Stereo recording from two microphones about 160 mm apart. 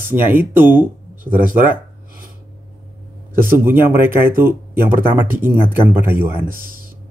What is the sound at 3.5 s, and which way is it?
Speech, 15° right (ahead or behind).